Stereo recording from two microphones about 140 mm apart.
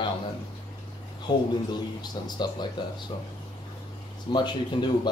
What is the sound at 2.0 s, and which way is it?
Speech, 30° left (ahead or behind).